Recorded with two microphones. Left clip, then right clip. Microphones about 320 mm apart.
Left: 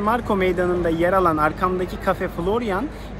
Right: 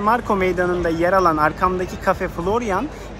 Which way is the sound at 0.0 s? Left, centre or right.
Centre.